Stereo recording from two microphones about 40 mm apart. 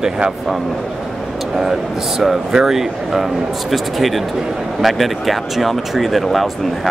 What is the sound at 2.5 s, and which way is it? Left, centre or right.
Speech, centre.